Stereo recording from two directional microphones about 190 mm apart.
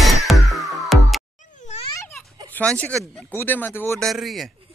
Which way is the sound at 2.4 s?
10° left (ahead or behind).